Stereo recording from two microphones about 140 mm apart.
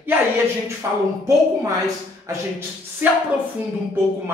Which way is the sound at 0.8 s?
15° right (ahead or behind).